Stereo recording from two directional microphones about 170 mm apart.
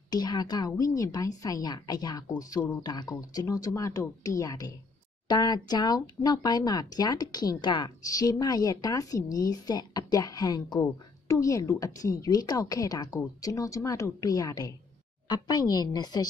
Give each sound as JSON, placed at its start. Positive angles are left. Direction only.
{"t": 0.1, "sound": "a woman's voice", "side_deg": 25}